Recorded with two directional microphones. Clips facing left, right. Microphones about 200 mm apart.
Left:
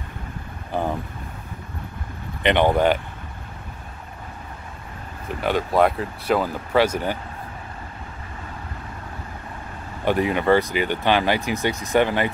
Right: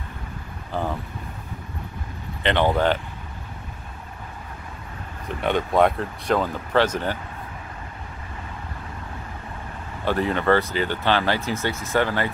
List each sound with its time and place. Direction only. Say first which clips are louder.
0.7 s boat: left 2 dB; 15° left (ahead or behind)
2.4 s speech: left 3 dB; 15° left (ahead or behind)
5.4 s speech: even; 5° left (ahead or behind)
10.0 s speech: left 2 dB; 15° left (ahead or behind)